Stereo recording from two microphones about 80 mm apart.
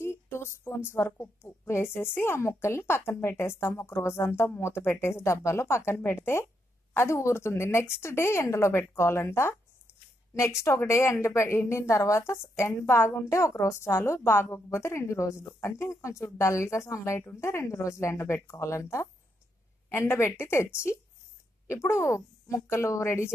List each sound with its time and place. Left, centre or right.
0.0 s a woman's voice: left
10.6 s a woman's voice: left